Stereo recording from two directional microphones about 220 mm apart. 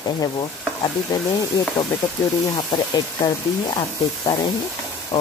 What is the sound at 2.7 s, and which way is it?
Speech, 20° left (ahead or behind).